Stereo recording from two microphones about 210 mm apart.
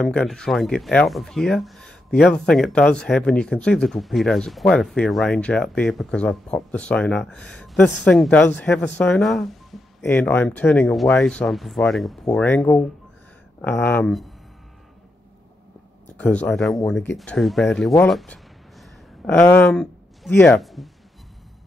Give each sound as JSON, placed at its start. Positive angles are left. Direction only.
{"t": 0.0, "sound": "speech", "side_deg": 0}
{"t": 16.2, "sound": "speech", "side_deg": 5}
{"t": 17.9, "sound": "a sound", "side_deg": 0}
{"t": 20.6, "sound": "speech", "side_deg": 0}